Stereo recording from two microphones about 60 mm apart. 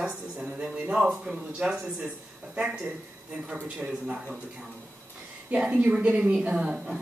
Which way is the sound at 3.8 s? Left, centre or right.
Centre.